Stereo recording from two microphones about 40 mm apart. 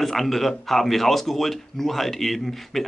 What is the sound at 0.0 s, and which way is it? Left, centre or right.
Speech, centre.